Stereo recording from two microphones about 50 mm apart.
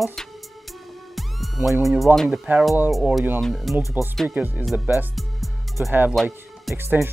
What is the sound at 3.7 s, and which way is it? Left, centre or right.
Speech, centre.